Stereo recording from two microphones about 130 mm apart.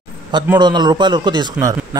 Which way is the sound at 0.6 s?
35° right (ahead or behind).